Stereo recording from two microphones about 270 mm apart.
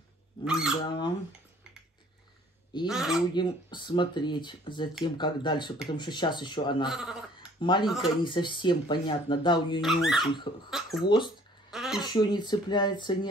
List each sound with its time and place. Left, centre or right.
0.5 s speech: centre
0.8 s speech: centre
2.9 s speech: centre
3.3 s speech: centre
6.9 s speech: centre
8.2 s speech: centre
9.8 s speech: centre
11.1 s speech: centre
11.7 s a sound: centre
12.0 s speech: centre